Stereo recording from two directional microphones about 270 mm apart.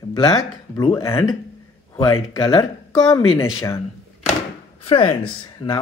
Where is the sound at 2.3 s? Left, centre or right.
Centre.